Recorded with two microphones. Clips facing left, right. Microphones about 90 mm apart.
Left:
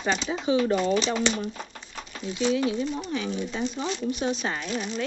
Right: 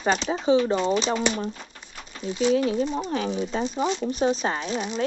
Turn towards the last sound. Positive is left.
turn(degrees=-30)  # may be behind; listen again after turning